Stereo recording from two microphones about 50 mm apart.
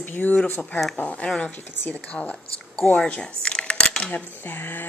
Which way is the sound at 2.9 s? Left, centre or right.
Centre.